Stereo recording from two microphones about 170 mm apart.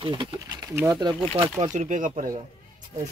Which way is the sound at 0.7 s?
15° right (ahead or behind).